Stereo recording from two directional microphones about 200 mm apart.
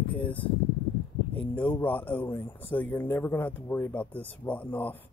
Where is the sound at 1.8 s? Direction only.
10° left (ahead or behind).